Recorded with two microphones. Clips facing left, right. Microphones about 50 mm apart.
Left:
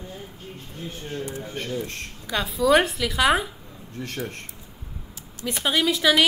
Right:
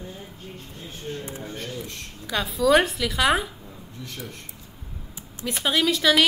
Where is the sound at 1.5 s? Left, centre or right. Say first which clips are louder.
Left 4 dB; left.